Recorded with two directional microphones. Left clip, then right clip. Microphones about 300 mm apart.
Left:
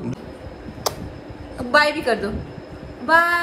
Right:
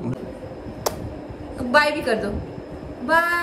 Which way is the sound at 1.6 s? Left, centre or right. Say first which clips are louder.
Left 1 dB; centre.